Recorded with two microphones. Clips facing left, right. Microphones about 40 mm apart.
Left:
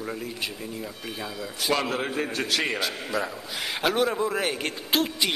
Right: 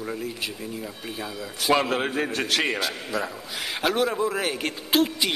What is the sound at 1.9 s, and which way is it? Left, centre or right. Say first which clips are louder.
Speech: right 3 dB; right.